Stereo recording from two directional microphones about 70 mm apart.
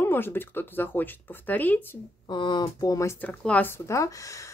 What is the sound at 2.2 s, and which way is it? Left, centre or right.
Speech, left.